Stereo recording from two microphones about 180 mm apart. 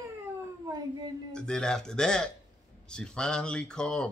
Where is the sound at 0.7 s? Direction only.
20° right (ahead or behind).